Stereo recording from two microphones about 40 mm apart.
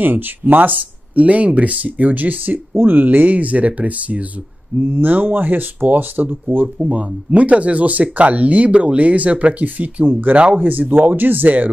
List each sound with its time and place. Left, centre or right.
0.0 s speech: right
2.7 s speech: right
4.7 s speech: right
10.6 s speech: right